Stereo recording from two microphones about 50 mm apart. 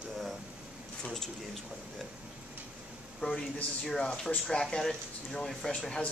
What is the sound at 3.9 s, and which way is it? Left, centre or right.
Speech, centre.